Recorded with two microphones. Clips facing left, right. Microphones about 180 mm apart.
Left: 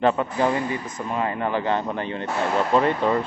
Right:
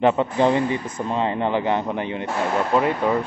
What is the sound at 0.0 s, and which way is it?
Speech, 20° right (ahead or behind).